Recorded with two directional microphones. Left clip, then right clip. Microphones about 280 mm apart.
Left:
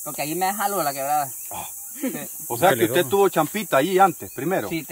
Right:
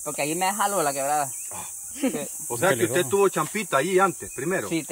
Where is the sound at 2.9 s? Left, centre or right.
Left.